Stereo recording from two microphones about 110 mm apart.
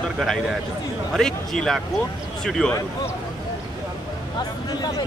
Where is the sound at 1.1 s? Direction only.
5° left (ahead or behind).